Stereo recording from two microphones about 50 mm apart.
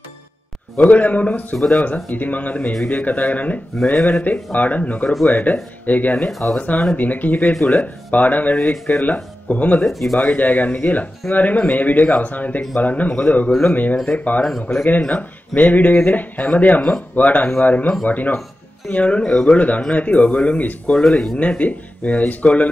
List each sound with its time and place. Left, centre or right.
0.7 s speech: left
6.3 s speech: centre
6.6 s speech: left
7.6 s speech: left
8.1 s speech: left
9.8 s speech: centre
10.1 s speech: left
20.9 s speech: centre
21.4 s speech: left